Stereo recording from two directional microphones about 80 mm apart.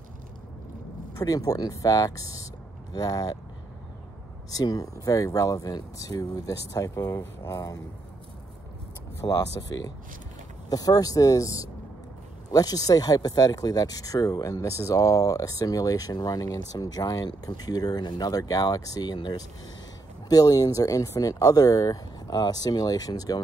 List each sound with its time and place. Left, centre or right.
1.1 s speech: left
4.5 s speech: left
9.2 s speech: left